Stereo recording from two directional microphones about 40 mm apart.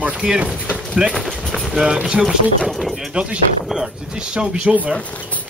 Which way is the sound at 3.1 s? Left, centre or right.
Right.